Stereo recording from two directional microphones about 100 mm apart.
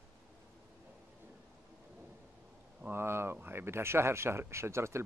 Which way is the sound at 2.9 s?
25° right (ahead or behind).